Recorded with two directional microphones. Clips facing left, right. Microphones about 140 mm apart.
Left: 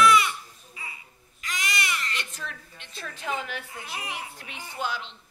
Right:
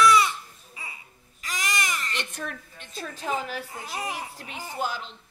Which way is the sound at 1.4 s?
40° right (ahead or behind).